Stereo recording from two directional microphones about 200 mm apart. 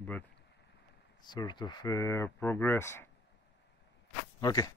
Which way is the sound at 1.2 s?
20° left (ahead or behind).